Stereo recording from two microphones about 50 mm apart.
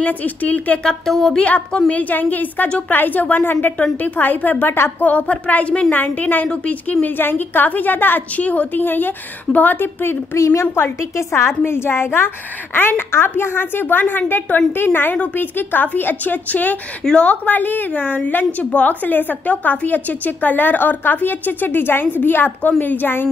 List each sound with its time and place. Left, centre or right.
0.0 s a woman's voice: left
0.8 s speech: centre
1.9 s a woman's voice: left
5.0 s a woman's voice: left
7.2 s a woman's voice: left
10.3 s a woman's voice: left
10.7 s a woman's voice: left
11.1 s a woman's voice: left
17.0 s a woman's voice: centre
17.5 s a woman's voice: left